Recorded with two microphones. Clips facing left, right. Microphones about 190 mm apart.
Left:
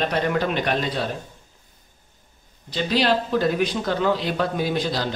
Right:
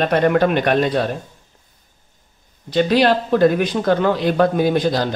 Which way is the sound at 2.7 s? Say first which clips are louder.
Right 6 dB; 55° right (ahead or behind).